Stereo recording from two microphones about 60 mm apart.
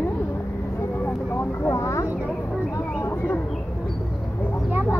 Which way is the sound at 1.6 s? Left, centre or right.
Left.